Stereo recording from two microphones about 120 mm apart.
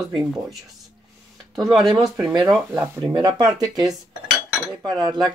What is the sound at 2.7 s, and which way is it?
Speech, 20° right (ahead or behind).